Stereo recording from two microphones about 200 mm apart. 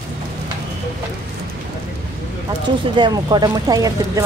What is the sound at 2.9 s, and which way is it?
Speech, 20° right (ahead or behind).